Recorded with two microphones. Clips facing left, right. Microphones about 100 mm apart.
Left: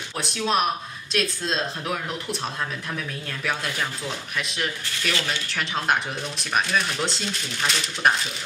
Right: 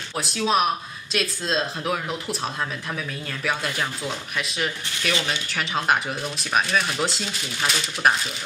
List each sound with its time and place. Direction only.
0.2 s speech: centre (ahead or behind)